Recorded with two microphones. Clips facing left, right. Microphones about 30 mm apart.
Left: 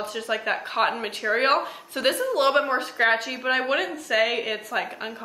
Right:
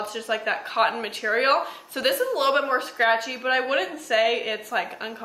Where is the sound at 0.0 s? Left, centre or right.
Centre.